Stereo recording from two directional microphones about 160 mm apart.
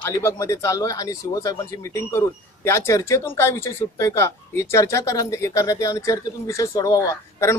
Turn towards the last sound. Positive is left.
turn(degrees=20)  # may be behind; listen again after turning